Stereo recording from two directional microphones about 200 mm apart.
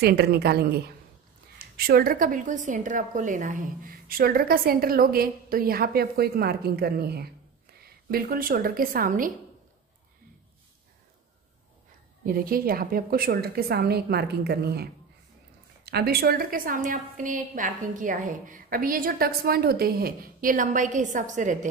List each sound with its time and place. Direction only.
0.0 s a woman's voice: 50° right (ahead or behind)
12.4 s a woman's voice: 45° right (ahead or behind)